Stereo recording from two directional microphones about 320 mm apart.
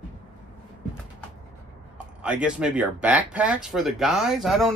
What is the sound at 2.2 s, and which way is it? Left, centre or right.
Speech, centre.